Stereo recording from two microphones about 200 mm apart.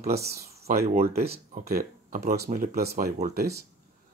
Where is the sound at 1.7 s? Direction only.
45° right (ahead or behind).